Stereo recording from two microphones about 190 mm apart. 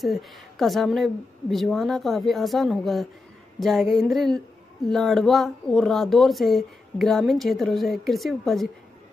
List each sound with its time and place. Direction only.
0.0 s speech: centre (ahead or behind)